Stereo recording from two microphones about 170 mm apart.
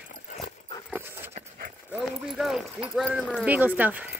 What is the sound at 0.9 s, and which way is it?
Dog, 10° right (ahead or behind).